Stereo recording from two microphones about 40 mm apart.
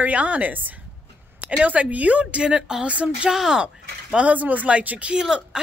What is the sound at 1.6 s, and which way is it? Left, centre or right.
Speech, right.